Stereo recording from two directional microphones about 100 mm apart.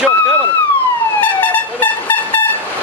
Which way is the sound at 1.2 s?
20° left (ahead or behind).